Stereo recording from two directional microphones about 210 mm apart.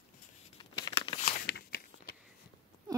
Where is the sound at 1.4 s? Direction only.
50° left (ahead or behind).